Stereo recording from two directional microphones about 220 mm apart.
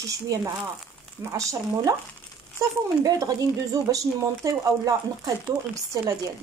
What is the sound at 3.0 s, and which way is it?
Speech, 15° right (ahead or behind).